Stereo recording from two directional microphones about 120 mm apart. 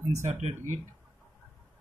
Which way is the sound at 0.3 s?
75° right (ahead or behind).